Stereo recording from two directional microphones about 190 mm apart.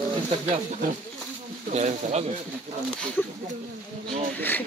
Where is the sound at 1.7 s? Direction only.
40° right (ahead or behind).